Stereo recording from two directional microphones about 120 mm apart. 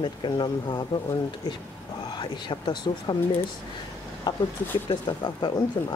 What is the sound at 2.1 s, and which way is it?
Speech, 40° left (ahead or behind).